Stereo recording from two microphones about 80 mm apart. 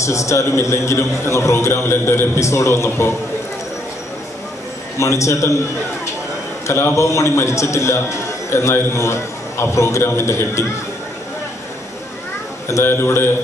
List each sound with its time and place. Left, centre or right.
0.0 s a man's voice: left
4.9 s a man's voice: left
6.7 s a man's voice: left
12.6 s a man's voice: left